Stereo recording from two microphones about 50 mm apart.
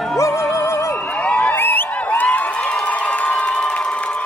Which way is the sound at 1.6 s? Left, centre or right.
Left.